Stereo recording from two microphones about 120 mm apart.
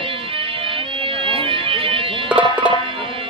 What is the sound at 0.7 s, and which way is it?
Music, 50° right (ahead or behind).